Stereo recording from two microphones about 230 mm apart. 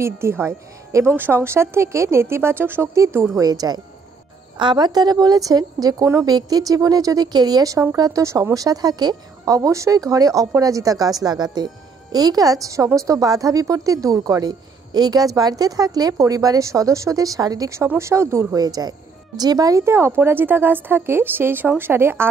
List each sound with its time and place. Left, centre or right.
0.0 s a woman's voice: centre